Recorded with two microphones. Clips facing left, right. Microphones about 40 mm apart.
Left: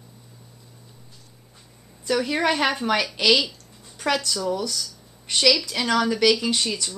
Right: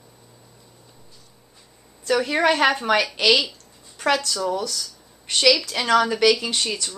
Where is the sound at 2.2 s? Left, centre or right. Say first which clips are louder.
Right 4 dB; centre.